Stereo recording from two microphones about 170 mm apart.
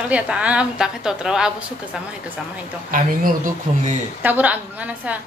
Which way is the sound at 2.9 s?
50° right (ahead or behind).